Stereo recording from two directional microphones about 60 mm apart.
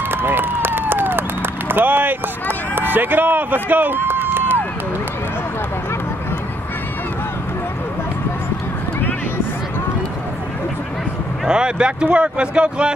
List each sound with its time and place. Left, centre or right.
0.1 s run: right
11.4 s speech: centre